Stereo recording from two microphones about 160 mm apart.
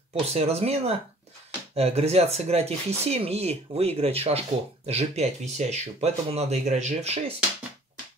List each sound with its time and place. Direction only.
0.1 s speech: 40° right (ahead or behind)